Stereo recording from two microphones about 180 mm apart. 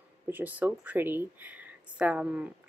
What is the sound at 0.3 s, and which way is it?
Speech, 10° right (ahead or behind).